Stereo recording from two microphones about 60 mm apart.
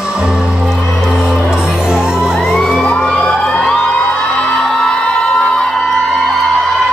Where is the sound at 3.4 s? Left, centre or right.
Centre.